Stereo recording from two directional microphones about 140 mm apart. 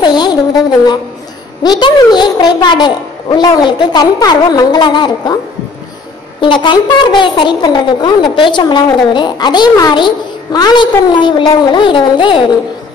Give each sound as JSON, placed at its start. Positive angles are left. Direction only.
{"t": 0.0, "sound": "a sound", "side_deg": 30}
{"t": 1.6, "sound": "a woman's voice", "side_deg": 30}
{"t": 6.4, "sound": "a woman's voice", "side_deg": 35}